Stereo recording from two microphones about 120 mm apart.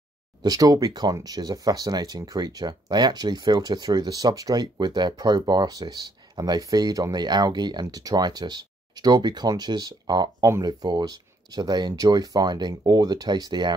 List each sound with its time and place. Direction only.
0.4 s speech: 30° right (ahead or behind)